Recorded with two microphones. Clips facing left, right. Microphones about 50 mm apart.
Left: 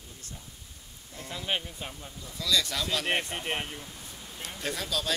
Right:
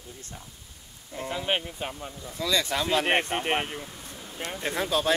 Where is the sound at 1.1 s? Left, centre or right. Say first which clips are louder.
Right 5 dB; right.